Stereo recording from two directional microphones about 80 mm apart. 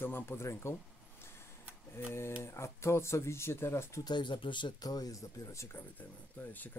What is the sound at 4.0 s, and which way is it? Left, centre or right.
Speech, left.